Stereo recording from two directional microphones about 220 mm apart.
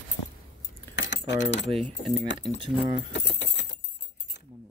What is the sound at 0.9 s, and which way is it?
Keys jangling, 55° left (ahead or behind).